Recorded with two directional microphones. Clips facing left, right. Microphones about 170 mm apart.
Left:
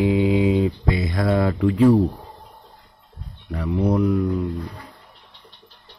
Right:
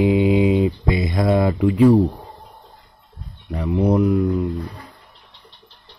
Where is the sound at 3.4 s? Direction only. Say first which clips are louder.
Right 3 dB; 20° right (ahead or behind).